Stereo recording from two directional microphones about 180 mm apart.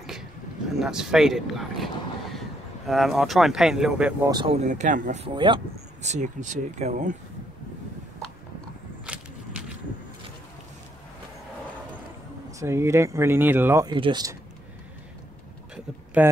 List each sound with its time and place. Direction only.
0.7 s speech: centre (ahead or behind)
4.3 s speech: 25° right (ahead or behind)
4.6 s speech: 45° right (ahead or behind)
5.3 s speech: 25° right (ahead or behind)
6.0 s speech: 40° right (ahead or behind)
9.0 s a sound: 5° right (ahead or behind)
12.4 s speech: 15° right (ahead or behind)
13.8 s speech: 25° right (ahead or behind)
16.1 s speech: 10° right (ahead or behind)